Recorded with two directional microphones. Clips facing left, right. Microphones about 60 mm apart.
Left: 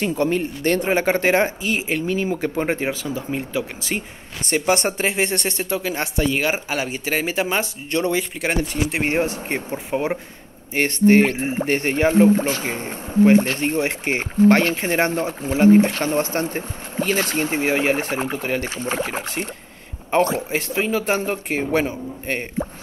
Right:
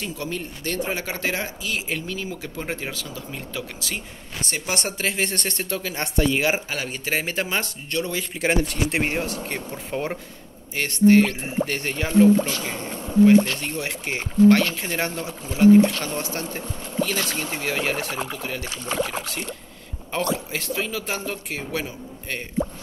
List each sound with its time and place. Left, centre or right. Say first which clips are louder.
0.0 s speech: left 10 dB; left; by 5.8 s centre
5.8 s speech: right 1 dB; centre
7.1 s speech: left 3 dB; centre
7.9 s speech: left 6 dB; left
8.4 s speech: even; centre
9.0 s speech: left 4 dB; left
10.7 s speech: left 1 dB; left